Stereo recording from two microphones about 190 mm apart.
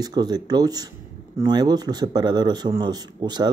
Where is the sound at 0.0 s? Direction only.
20° right (ahead or behind).